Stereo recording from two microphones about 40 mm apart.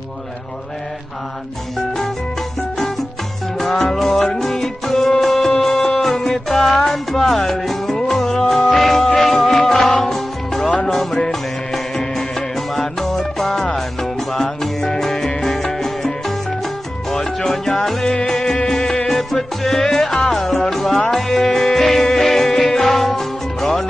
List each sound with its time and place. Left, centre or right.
3.5 s music: centre